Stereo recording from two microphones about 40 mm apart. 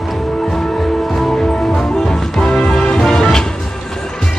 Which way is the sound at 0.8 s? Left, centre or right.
Centre.